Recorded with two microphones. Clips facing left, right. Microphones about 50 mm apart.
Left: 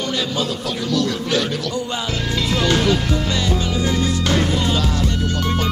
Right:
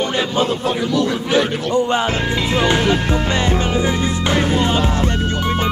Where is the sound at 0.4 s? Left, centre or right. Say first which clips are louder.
Right 5 dB; right.